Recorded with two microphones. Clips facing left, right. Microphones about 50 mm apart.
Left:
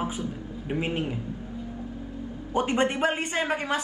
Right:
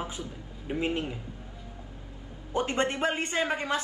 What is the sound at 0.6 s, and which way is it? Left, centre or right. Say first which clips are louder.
Speech: left 1 dB; left.